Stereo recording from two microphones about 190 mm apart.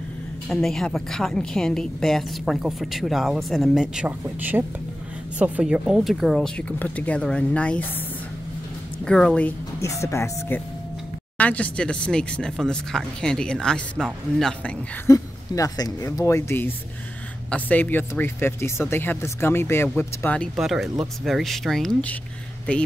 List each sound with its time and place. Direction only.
0.5 s a woman's voice: centre (ahead or behind)
9.0 s a woman's voice: 5° left (ahead or behind)
15.0 s a woman's voice: 15° left (ahead or behind); by 22.1 s centre (ahead or behind)